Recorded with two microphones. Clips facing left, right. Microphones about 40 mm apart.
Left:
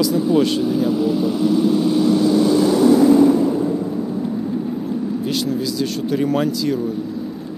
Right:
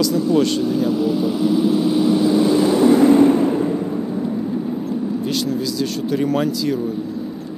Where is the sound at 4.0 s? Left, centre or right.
Centre.